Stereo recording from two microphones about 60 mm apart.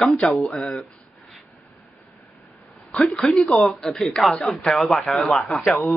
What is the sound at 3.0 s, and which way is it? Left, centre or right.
Speech, centre.